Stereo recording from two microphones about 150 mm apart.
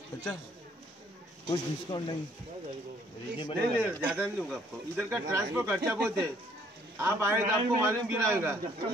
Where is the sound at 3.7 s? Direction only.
15° right (ahead or behind).